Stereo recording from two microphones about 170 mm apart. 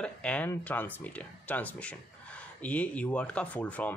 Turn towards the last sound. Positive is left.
turn(degrees=10)  # may be behind; listen again after turning